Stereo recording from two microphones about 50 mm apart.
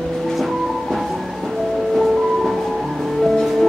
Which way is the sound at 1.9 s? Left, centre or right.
Centre.